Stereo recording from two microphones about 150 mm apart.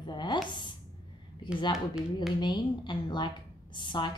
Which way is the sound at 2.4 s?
30° left (ahead or behind).